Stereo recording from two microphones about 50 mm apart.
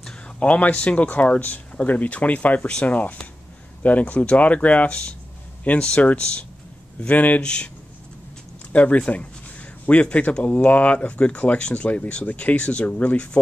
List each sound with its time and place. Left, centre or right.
0.4 s speech: left
5.8 s speech: centre
7.0 s speech: left
7.4 s speech: centre
8.7 s speech: left